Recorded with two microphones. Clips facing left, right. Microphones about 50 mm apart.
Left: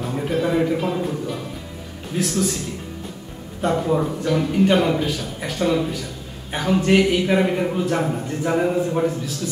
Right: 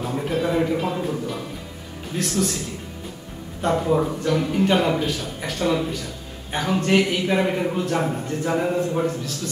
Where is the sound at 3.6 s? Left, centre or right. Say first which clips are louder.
Even; centre.